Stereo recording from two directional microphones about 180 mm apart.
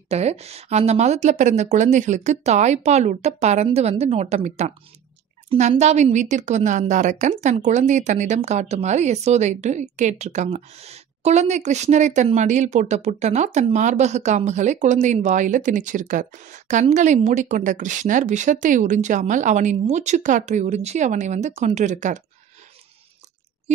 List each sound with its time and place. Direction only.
0.1 s a woman's voice: 35° right (ahead or behind)